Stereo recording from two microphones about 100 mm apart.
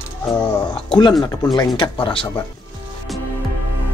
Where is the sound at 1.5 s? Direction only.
50° left (ahead or behind).